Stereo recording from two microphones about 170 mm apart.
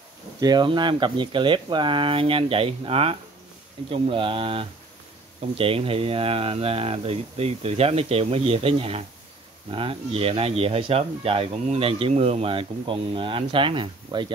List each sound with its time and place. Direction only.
0.4 s speech: 25° right (ahead or behind)